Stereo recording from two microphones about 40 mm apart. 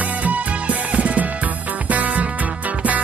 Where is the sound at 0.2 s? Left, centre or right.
Right.